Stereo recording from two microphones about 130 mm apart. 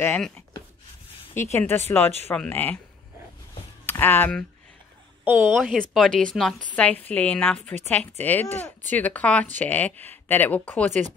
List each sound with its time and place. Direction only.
1.3 s speech: 15° left (ahead or behind)
3.8 s speech: 15° left (ahead or behind)
5.2 s speech: 15° right (ahead or behind)
5.6 s speech: centre (ahead or behind)
10.9 s speech: 70° right (ahead or behind)